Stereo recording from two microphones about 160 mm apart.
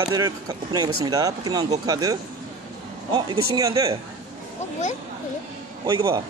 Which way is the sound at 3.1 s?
25° right (ahead or behind).